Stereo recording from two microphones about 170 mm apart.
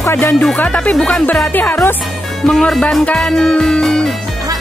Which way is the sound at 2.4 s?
5° left (ahead or behind).